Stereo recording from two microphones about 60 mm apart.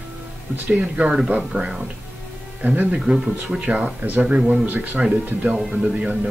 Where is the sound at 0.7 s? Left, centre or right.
Right.